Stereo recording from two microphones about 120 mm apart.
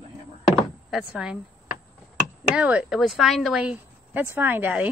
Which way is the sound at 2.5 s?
5° right (ahead or behind).